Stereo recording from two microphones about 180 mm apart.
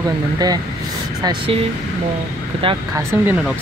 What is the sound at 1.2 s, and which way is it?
Speech, 25° right (ahead or behind).